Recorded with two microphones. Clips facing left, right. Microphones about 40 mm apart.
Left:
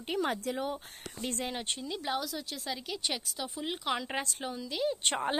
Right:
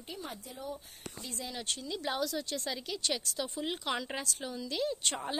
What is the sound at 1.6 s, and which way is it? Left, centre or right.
Speech, left.